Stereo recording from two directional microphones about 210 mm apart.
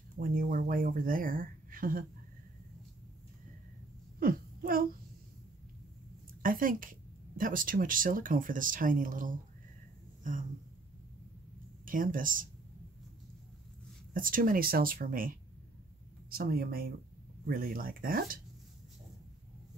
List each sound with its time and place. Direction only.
0.2 s speech: 40° right (ahead or behind)
4.2 s a sound: 45° right (ahead or behind)
6.4 s speech: 40° right (ahead or behind)
11.8 s speech: 40° right (ahead or behind)
14.1 s speech: 40° right (ahead or behind)